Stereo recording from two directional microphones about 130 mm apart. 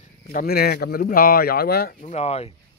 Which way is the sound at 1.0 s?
90° left.